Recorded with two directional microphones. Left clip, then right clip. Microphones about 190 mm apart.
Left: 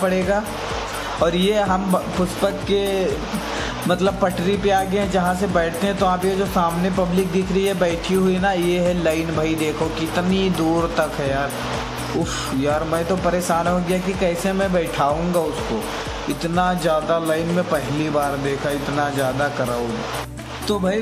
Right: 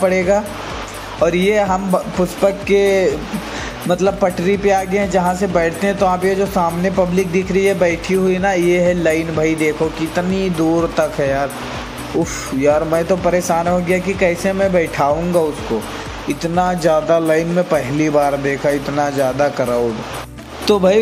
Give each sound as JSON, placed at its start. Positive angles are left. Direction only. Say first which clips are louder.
{"t": 0.0, "sound": "speech", "louder": "right 5 dB", "side_deg": -15}
{"t": 12.6, "sound": "speech", "louder": "right 8 dB", "side_deg": -15}
{"t": 16.5, "sound": "speech", "louder": "right 5 dB", "side_deg": -15}
{"t": 20.6, "sound": "speech", "louder": "right 9 dB", "side_deg": -25}